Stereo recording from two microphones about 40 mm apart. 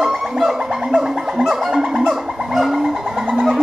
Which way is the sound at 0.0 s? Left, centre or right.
Centre.